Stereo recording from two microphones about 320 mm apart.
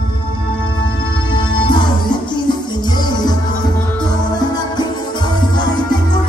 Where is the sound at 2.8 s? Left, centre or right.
Centre.